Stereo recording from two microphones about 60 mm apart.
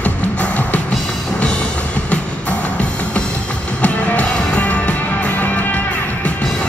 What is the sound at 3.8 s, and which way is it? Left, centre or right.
Music, left.